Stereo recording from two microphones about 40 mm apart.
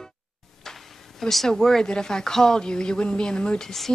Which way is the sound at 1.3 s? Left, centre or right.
Centre.